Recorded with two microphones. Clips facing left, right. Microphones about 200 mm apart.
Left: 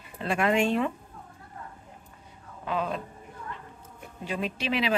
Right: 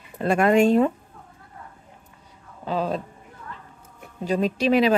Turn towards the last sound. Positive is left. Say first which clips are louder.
# right 9 dB
turn(degrees=-45)  # may be behind; listen again after turning